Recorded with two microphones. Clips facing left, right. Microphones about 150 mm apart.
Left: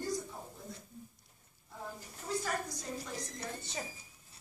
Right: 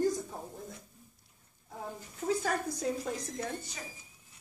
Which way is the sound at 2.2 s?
60° right (ahead or behind).